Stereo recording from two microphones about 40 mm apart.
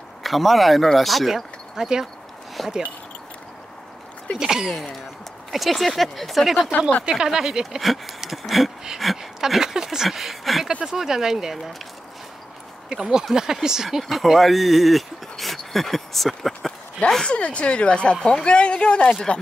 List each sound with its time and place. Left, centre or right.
0.2 s speech: centre
2.6 s speech: centre
4.4 s speech: centre
5.5 s speech: centre
7.1 s speech: centre
7.8 s a sound: centre
9.0 s speech: centre
10.8 s speech: centre
12.9 s speech: centre
17.3 s speech: left